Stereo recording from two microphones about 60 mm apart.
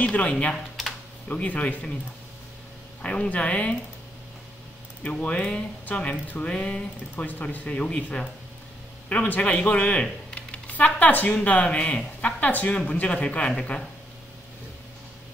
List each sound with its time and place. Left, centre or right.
0.0 s speech: left
3.0 s speech: centre
5.0 s speech: left
10.0 s typing: centre
10.7 s speech: left